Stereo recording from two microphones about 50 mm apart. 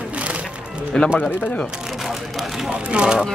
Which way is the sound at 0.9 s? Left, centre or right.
Centre.